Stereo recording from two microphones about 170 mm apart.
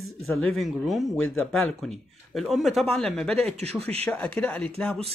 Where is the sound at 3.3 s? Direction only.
35° right (ahead or behind).